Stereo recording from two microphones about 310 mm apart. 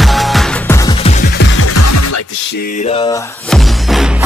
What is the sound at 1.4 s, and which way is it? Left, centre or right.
Music, left.